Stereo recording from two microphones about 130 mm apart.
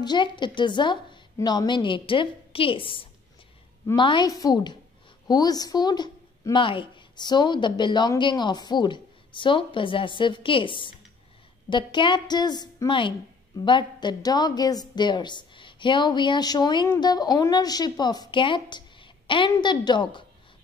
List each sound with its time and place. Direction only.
0.0 s a woman's voice: 35° left (ahead or behind)